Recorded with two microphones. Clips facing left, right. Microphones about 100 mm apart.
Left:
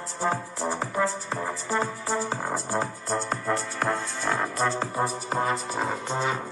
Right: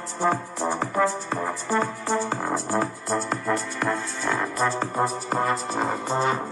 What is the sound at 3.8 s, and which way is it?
Music, centre (ahead or behind).